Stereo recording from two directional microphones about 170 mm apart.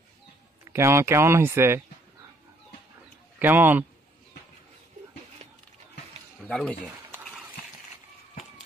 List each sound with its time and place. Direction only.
0.7 s speech: 15° right (ahead or behind)
3.3 s speech: 10° right (ahead or behind)
6.4 s speech: 5° left (ahead or behind)